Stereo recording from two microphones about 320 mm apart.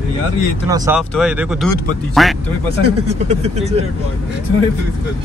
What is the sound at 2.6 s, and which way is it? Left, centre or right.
Speech, centre.